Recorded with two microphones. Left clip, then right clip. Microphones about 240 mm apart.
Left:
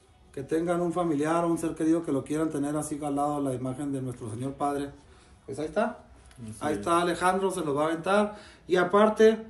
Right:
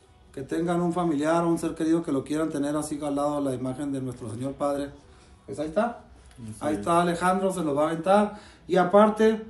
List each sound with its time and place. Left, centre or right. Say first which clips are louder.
0.3 s a man's voice: even; centre